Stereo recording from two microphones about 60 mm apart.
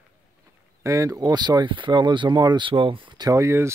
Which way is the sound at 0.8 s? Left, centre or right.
Right.